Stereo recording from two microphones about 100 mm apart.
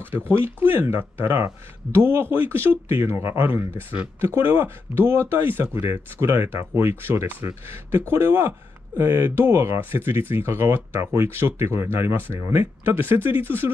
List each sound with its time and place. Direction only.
0.0 s speech: 20° right (ahead or behind)